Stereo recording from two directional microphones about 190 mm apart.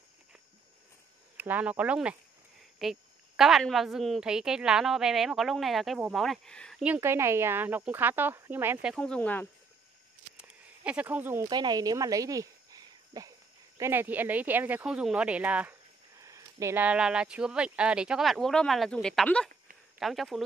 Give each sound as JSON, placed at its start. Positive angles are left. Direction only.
{"t": 1.3, "sound": "a woman's voice", "side_deg": -10}
{"t": 6.8, "sound": "speech", "side_deg": -10}
{"t": 8.9, "sound": "speech", "side_deg": 5}
{"t": 10.3, "sound": "a sound", "side_deg": -5}
{"t": 11.4, "sound": "a woman's voice", "side_deg": -20}